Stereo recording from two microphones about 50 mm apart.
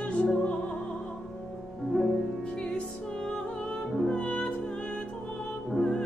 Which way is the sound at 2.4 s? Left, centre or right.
Centre.